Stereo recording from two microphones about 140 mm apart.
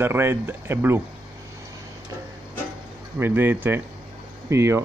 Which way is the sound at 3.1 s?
15° right (ahead or behind).